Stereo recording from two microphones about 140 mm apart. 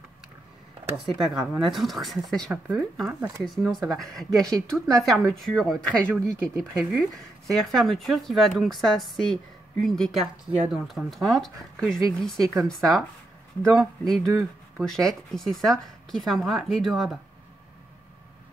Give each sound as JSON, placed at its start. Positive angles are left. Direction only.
{"t": 1.1, "sound": "speech", "side_deg": 0}
{"t": 3.1, "sound": "speech", "side_deg": -20}
{"t": 3.7, "sound": "speech", "side_deg": 0}